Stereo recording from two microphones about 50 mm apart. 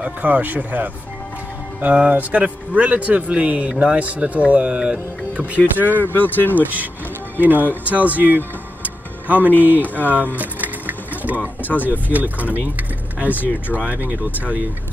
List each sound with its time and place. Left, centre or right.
0.0 s speech: right
5.8 s speech: right
6.0 s speech: left
6.6 s speech: right
8.8 s music: right
9.6 s speech: right
10.0 s a sound: right
11.6 s speech: left
11.9 s speech: right